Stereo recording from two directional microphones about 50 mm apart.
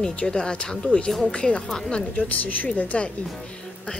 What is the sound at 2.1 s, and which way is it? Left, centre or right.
Speech, left.